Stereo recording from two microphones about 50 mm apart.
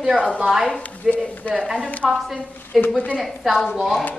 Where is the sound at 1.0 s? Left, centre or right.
Left.